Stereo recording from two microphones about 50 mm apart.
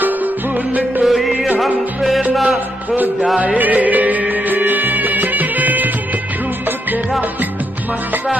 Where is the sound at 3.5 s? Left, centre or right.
Right.